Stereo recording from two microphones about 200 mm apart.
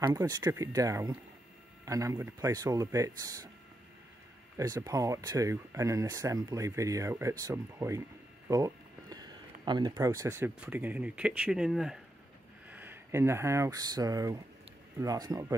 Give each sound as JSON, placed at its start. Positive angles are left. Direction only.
{"t": 0.0, "sound": "speech", "side_deg": -20}
{"t": 4.6, "sound": "speech", "side_deg": -15}